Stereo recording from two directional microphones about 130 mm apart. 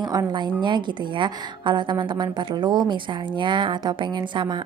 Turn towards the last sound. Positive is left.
turn(degrees=-35)  # may be behind; listen again after turning